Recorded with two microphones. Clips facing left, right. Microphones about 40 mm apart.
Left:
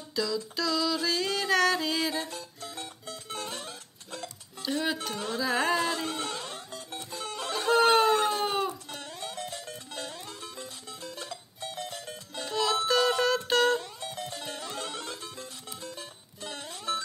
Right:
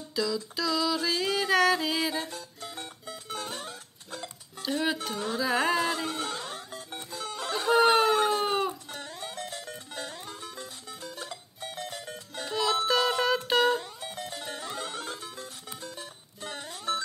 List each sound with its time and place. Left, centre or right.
0.1 s music: centre
2.6 s music: right
4.6 s speech: centre
5.0 s music: centre
7.3 s a sound: centre
9.2 s music: right
10.5 s music: centre; by 12.4 s right
12.4 s music: centre
14.5 s music: right
16.0 s music: centre